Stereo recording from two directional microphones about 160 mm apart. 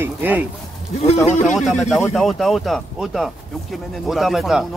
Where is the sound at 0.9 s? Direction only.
40° left (ahead or behind).